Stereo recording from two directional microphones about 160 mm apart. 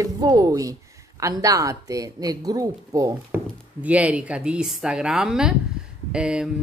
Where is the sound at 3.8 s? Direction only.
10° right (ahead or behind).